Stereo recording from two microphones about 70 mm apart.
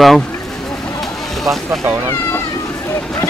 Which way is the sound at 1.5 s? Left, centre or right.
Right.